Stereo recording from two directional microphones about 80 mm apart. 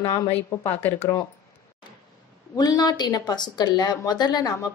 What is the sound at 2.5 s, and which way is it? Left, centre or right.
Speech, left.